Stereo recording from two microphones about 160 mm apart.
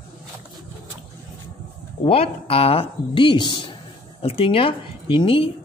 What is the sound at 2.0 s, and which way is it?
Speech, 35° left (ahead or behind).